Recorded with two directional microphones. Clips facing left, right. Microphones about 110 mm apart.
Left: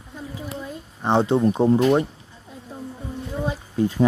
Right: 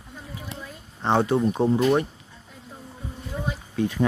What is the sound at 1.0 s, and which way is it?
Speech, 20° left (ahead or behind).